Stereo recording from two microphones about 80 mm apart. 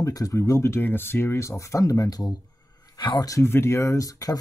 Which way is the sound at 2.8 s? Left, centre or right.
Left.